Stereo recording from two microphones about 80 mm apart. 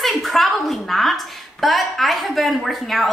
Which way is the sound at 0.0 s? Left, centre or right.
Centre.